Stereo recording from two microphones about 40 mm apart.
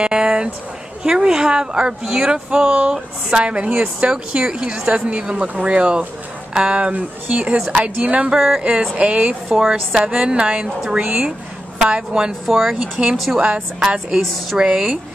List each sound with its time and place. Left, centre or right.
0.0 s a sound: right
1.0 s speech: right
8.3 s speech: centre
9.5 s a woman's voice: centre
12.4 s a woman's voice: centre
13.4 s speech: right
14.2 s a woman's voice: centre
14.6 s speech: centre